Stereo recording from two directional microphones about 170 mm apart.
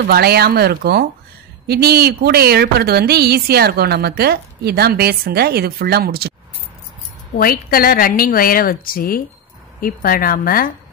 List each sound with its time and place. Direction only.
0.0 s a woman's voice: 65° right (ahead or behind)
7.3 s a woman's voice: 60° left (ahead or behind)